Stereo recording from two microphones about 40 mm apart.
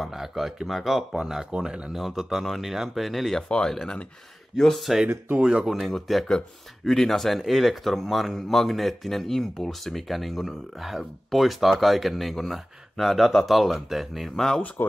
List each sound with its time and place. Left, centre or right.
0.0 s speech: centre
1.1 s speech: centre
2.0 s speech: centre
3.4 s speech: left
4.9 s speech: centre
5.4 s speech: right
5.9 s speech: centre
14.3 s speech: centre
14.8 s speech: left